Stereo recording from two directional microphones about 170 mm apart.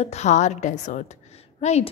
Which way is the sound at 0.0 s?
40° left (ahead or behind).